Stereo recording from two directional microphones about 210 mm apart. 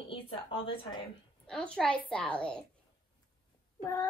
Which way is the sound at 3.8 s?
15° left (ahead or behind).